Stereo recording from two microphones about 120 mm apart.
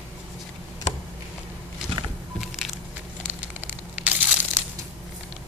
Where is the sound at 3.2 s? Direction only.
10° right (ahead or behind).